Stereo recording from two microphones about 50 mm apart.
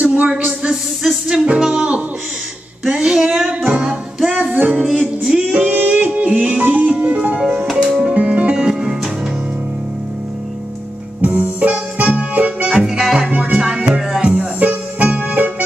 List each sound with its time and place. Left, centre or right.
0.0 s a sound: right
1.3 s music: right
2.9 s a sound: centre
3.6 s music: right
4.8 s music: centre
5.7 s music: right
6.6 s music: right
6.9 s music: right
8.1 s music: right
11.1 s music: right
12.6 s music: centre
14.6 s music: right